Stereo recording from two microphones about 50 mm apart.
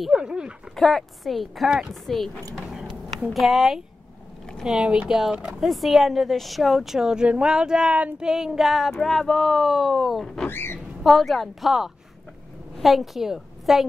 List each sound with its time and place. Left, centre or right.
0.1 s speech: centre
0.7 s speech: centre
4.8 s a sound: centre
5.1 s speech: centre
7.2 s a sound: centre
8.2 s speech: centre
10.5 s speech: left
11.0 s a woman's voice: centre